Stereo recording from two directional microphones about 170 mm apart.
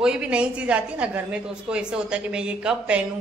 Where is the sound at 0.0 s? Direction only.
5° right (ahead or behind).